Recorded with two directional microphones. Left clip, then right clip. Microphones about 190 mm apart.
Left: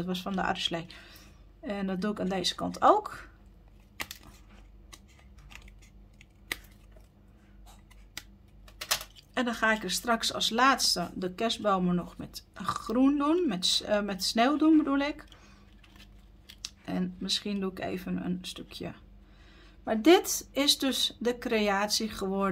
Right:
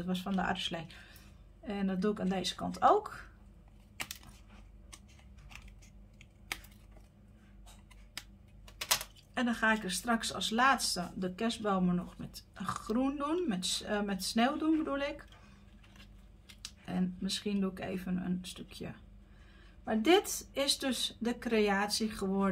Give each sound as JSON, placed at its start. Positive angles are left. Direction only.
{"t": 0.0, "sound": "speech", "side_deg": 45}
{"t": 9.3, "sound": "speech", "side_deg": 50}
{"t": 16.6, "sound": "speech", "side_deg": 45}